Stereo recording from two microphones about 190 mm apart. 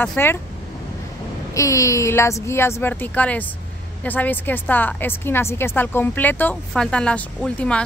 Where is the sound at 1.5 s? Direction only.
15° left (ahead or behind).